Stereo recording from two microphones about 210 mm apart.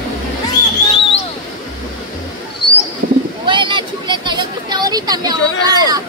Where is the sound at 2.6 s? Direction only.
50° left (ahead or behind).